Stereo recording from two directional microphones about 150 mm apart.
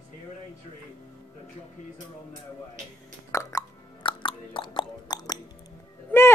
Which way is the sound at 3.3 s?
20° left (ahead or behind).